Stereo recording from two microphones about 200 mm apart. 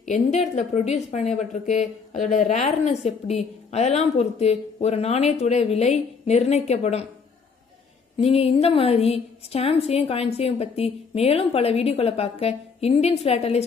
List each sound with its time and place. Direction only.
0.0 s speech: 35° left (ahead or behind)
8.2 s speech: 30° left (ahead or behind)